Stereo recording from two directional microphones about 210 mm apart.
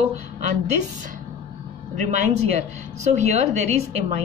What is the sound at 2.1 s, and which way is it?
A woman's voice, 35° right (ahead or behind).